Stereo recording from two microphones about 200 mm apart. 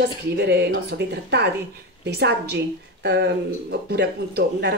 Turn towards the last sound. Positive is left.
turn(degrees=-55)  # may be behind; listen again after turning